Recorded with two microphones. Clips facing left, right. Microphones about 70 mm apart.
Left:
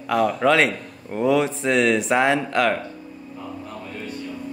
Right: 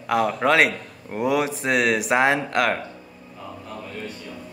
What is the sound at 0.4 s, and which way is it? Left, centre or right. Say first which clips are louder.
A man's voice: left 1 dB; centre.